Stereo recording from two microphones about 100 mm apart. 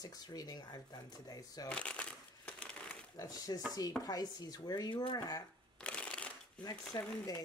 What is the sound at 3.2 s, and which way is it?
Speech, 35° left (ahead or behind).